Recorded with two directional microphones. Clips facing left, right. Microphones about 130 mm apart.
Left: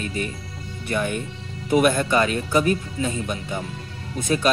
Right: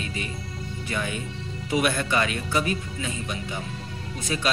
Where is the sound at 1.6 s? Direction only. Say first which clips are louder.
Left 6 dB; 45° left (ahead or behind).